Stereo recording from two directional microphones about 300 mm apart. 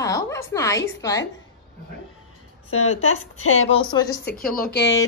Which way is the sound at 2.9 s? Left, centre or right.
Left.